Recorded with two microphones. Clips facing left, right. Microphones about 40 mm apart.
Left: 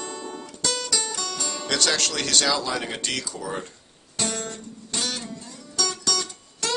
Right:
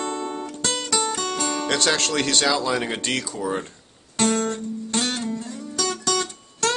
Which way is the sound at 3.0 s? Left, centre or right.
Right.